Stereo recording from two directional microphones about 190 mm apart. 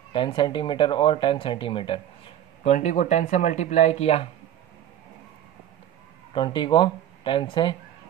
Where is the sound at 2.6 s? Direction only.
40° left (ahead or behind).